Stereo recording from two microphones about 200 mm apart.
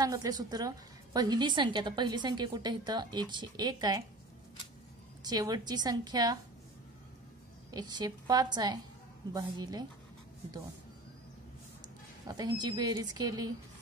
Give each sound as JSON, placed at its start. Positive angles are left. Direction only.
{"t": 0.0, "sound": "a woman's voice", "side_deg": -20}
{"t": 5.2, "sound": "a woman's voice", "side_deg": -20}
{"t": 7.7, "sound": "a woman's voice", "side_deg": -20}
{"t": 12.3, "sound": "a woman's voice", "side_deg": -20}